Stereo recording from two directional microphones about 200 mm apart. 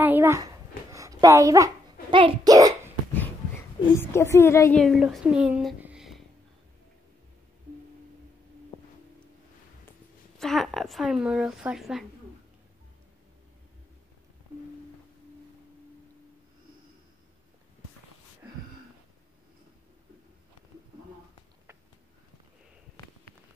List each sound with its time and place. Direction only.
0.0 s a sound: 10° right (ahead or behind)
0.9 s a child's voice: 15° right (ahead or behind)
4.0 s a woman's voice: 15° left (ahead or behind)
4.8 s speech: centre (ahead or behind)
10.4 s a woman's voice: centre (ahead or behind)